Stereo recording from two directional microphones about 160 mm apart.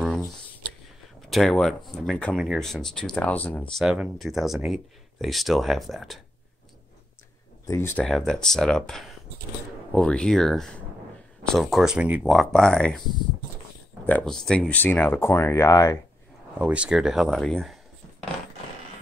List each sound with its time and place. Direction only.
1.3 s speech: 5° left (ahead or behind)
3.8 s speech: 5° right (ahead or behind)
7.6 s speech: 15° left (ahead or behind)
8.0 s speech: 5° left (ahead or behind)
14.0 s speech: 5° left (ahead or behind)
16.5 s speech: 5° right (ahead or behind)